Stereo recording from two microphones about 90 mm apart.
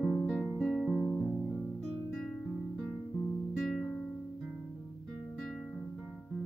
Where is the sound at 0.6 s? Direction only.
5° left (ahead or behind).